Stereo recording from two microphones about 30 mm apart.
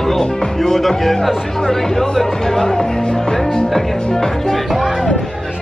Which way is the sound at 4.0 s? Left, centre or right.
Left.